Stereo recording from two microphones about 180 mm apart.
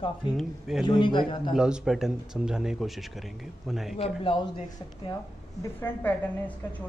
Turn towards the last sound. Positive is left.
turn(degrees=10)  # may be behind; listen again after turning